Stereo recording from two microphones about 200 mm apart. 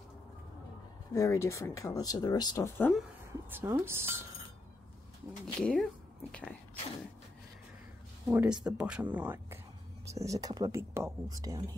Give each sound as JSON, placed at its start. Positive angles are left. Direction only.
{"t": 1.1, "sound": "speech", "side_deg": 15}
{"t": 3.4, "sound": "speech", "side_deg": -10}
{"t": 5.6, "sound": "a woman's voice", "side_deg": 5}
{"t": 8.3, "sound": "speech", "side_deg": -10}